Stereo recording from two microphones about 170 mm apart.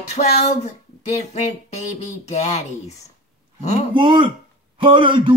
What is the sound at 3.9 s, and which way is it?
A man's voice, 30° right (ahead or behind).